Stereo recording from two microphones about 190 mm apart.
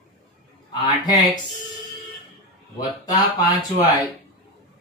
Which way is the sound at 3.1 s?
20° left (ahead or behind).